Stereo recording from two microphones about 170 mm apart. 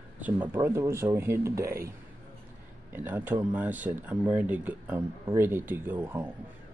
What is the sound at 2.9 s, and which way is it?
Speech, 10° right (ahead or behind).